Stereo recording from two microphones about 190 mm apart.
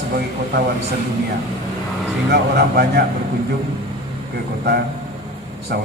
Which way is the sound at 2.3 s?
55° right (ahead or behind).